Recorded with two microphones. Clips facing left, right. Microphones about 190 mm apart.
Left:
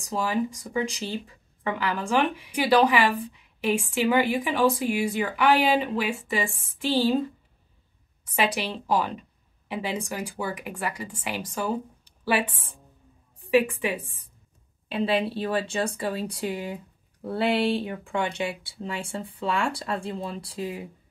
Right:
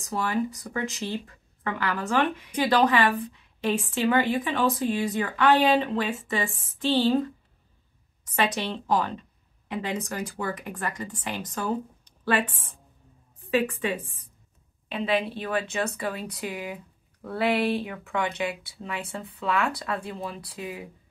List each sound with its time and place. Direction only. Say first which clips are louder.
0.9 s a woman's voice: right 1 dB; 15° left (ahead or behind)
8.3 s a woman's voice: even; 10° left (ahead or behind)
13.7 s a woman's voice: even; 10° left (ahead or behind)
14.9 s speech: left 2 dB; 30° left (ahead or behind)